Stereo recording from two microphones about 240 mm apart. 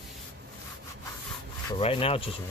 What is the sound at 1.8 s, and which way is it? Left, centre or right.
Speech, left.